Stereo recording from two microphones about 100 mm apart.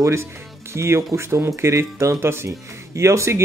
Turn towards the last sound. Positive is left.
turn(degrees=-30)  # may be behind; listen again after turning